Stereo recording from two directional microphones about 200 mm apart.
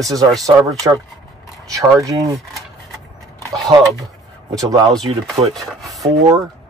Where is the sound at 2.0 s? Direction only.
15° right (ahead or behind).